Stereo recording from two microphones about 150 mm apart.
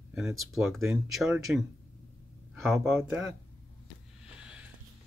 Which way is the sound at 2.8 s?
15° right (ahead or behind).